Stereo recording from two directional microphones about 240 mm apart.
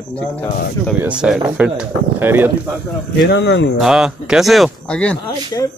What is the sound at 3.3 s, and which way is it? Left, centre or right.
Speech, left.